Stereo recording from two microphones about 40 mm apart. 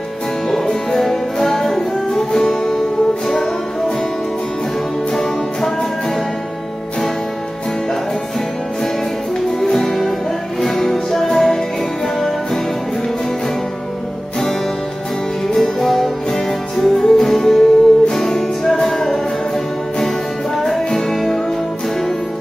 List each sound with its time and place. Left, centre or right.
0.7 s music: centre
5.1 s music: centre
9.6 s music: centre
15.5 s music: centre
20.6 s music: centre